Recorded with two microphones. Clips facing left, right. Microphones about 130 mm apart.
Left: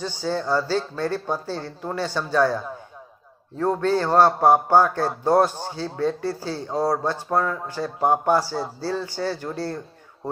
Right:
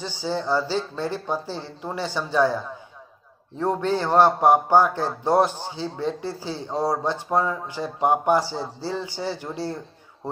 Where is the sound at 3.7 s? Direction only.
15° right (ahead or behind).